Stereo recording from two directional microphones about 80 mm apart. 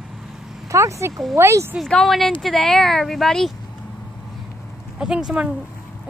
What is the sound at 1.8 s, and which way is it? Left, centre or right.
Speech, centre.